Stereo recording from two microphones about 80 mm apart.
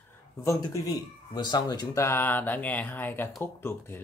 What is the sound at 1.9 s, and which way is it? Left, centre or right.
Speech, left.